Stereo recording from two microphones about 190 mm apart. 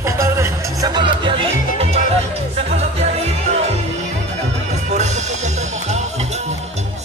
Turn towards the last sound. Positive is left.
turn(degrees=-35)  # may be behind; listen again after turning